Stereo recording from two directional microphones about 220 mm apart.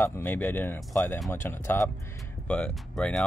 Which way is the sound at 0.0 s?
10° left (ahead or behind).